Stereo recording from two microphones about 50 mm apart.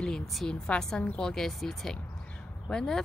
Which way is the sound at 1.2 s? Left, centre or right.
Centre.